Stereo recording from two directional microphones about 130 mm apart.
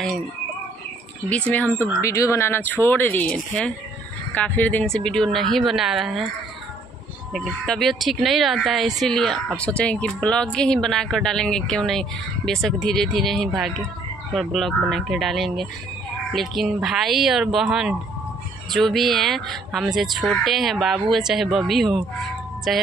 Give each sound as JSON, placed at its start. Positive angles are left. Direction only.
{"t": 1.5, "sound": "speech", "side_deg": 15}
{"t": 7.3, "sound": "speech", "side_deg": 0}